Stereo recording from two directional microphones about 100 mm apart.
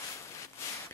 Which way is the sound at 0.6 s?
30° left (ahead or behind).